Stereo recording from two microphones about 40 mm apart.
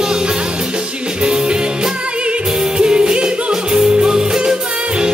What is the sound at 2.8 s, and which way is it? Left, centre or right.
Music, centre.